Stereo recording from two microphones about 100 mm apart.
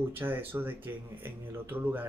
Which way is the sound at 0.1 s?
20° right (ahead or behind).